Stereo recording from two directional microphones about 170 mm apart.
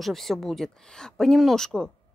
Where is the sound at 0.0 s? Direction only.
Centre (ahead or behind).